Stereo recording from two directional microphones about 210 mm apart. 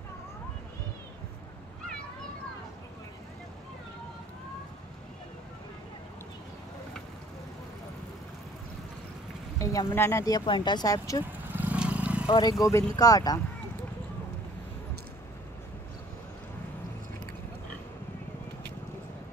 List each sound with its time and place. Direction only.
9.6 s speech: 15° left (ahead or behind)
11.5 s vehicle: 5° right (ahead or behind)
12.3 s speech: 20° left (ahead or behind)